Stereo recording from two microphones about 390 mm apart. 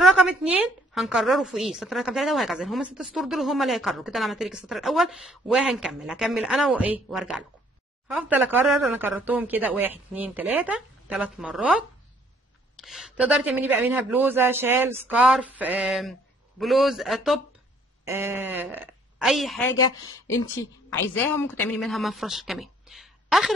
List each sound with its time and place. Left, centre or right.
0.0 s a woman's voice: centre
19.7 s speech: left
21.3 s a woman's voice: centre